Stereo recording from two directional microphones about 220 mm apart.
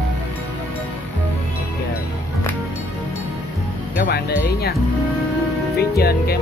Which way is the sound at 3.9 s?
45° left (ahead or behind).